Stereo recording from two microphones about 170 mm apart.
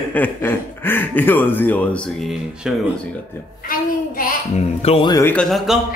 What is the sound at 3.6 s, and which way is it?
Child singing, 55° left (ahead or behind).